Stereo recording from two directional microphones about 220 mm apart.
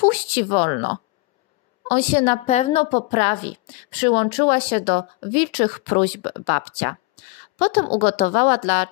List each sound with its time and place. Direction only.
0.0 s a woman's voice: 30° left (ahead or behind)